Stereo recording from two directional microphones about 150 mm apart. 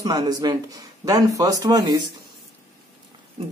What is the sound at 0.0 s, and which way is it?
Speech, 25° right (ahead or behind).